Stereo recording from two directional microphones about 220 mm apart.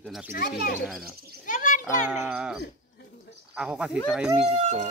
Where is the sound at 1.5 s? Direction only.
35° left (ahead or behind).